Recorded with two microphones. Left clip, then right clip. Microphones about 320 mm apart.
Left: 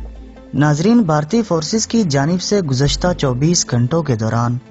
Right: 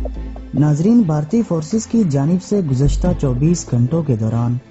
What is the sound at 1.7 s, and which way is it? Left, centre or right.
Speech, left.